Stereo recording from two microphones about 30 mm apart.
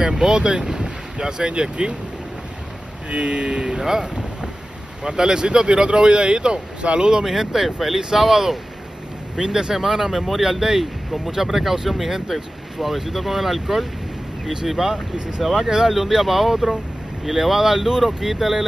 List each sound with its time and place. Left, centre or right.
0.1 s speech: right
3.1 s speech: right
3.6 s speech: centre
7.2 s speech: centre
9.4 s speech: right
9.8 s speech: centre